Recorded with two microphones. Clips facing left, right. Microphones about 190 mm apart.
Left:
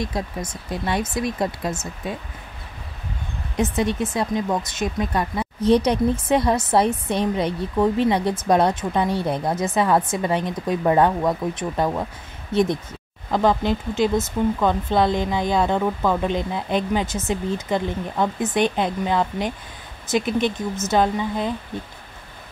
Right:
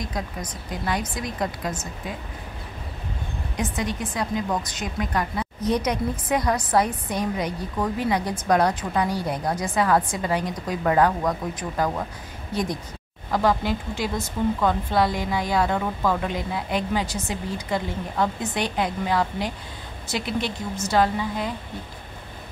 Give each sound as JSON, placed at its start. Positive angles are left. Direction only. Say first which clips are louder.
{"t": 0.0, "sound": "speech", "louder": "left 4 dB", "side_deg": 25}
{"t": 3.5, "sound": "speech", "louder": "left 6 dB", "side_deg": 25}